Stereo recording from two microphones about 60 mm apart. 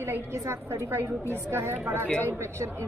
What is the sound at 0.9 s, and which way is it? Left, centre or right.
A woman's voice, right.